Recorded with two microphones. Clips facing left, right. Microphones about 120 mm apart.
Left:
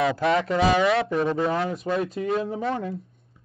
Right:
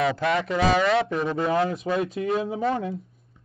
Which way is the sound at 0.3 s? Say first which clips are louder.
Left 2 dB; 30° left (ahead or behind).